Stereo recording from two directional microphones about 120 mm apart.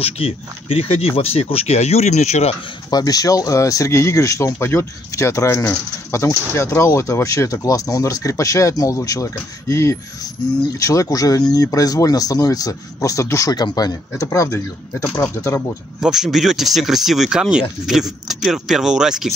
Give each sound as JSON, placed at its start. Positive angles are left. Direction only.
{"t": 0.0, "sound": "speech", "side_deg": 50}
{"t": 2.9, "sound": "speech", "side_deg": 30}
{"t": 16.0, "sound": "speech", "side_deg": -5}